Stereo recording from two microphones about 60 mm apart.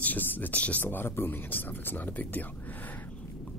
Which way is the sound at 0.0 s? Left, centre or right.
Left.